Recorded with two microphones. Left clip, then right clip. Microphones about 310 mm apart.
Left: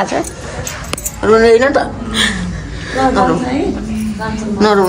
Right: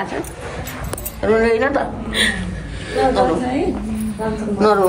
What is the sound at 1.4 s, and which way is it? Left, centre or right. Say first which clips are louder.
Speech: left 8 dB; left.